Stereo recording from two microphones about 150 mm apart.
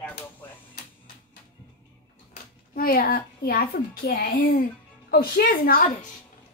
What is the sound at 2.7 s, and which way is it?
A woman's voice, 75° left (ahead or behind).